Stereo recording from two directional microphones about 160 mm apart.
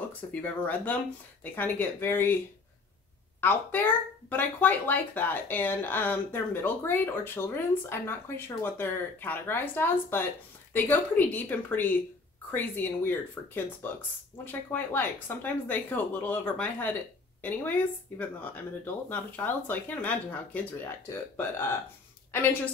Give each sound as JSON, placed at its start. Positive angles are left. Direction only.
{"t": 0.3, "sound": "speech", "side_deg": 10}
{"t": 3.3, "sound": "speech", "side_deg": 10}
{"t": 14.4, "sound": "a woman's voice", "side_deg": 10}